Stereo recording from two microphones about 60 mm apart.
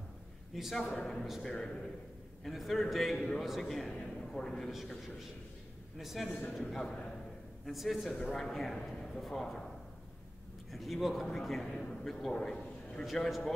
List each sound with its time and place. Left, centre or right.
0.6 s a man's voice: centre
0.9 s a man's voice: centre
10.7 s a man's voice: centre
13.0 s a man's voice: centre